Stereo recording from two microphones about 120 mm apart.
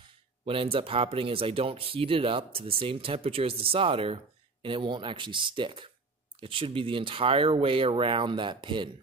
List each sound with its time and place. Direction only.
0.5 s speech: 50° right (ahead or behind)